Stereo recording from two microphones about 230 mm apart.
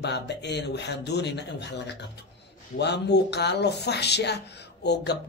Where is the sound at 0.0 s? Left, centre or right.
Left.